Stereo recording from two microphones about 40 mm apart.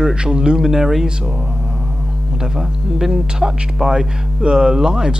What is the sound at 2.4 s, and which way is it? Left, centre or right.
Speech, centre.